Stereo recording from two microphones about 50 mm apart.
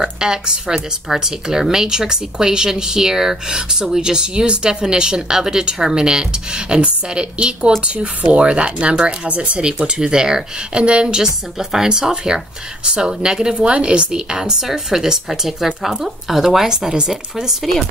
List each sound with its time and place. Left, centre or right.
0.0 s speech: centre